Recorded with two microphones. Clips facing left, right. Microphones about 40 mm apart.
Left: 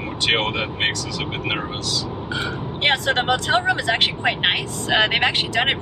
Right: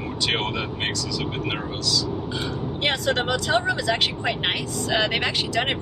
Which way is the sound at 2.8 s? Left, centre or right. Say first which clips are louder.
Left 4 dB; left.